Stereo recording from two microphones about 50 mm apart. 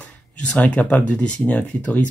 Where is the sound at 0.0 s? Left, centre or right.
Left.